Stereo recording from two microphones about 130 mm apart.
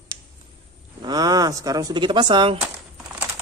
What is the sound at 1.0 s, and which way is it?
Speech, 30° right (ahead or behind).